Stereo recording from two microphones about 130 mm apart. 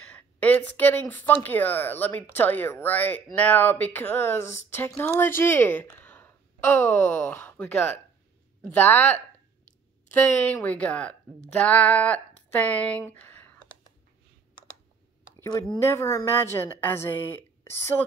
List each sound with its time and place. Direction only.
0.0 s speech: 10° left (ahead or behind)
10.5 s speech: 10° left (ahead or behind)
15.8 s a woman's voice: 20° left (ahead or behind)